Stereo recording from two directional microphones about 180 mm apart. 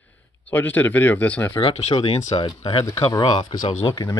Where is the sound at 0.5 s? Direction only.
10° left (ahead or behind).